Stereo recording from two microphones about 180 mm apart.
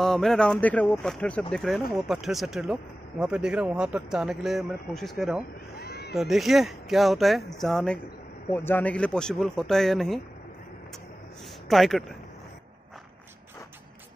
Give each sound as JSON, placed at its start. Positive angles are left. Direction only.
{"t": 0.0, "sound": "speech", "side_deg": 0}
{"t": 5.8, "sound": "cat", "side_deg": 60}
{"t": 6.1, "sound": "speech", "side_deg": 0}
{"t": 11.7, "sound": "speech", "side_deg": 0}